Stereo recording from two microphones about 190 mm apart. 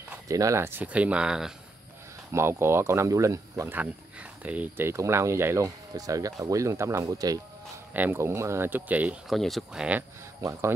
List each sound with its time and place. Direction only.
0.1 s speech: 15° right (ahead or behind)